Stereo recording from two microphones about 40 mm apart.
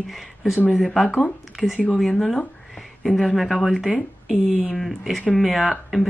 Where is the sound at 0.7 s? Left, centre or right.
Centre.